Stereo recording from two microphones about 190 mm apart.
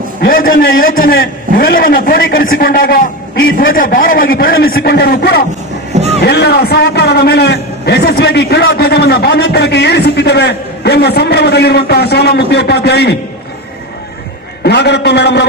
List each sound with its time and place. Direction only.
0.2 s a man's voice: 50° left (ahead or behind)
14.6 s a man's voice: 60° left (ahead or behind)